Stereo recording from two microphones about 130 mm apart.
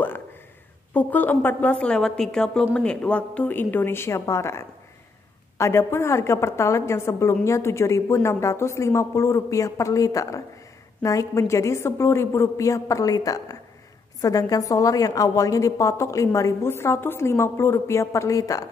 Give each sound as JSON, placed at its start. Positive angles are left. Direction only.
{"t": 0.9, "sound": "a woman's voice", "side_deg": 10}